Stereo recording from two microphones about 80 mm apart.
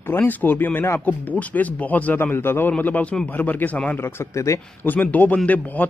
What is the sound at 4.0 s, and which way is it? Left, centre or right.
Speech, left.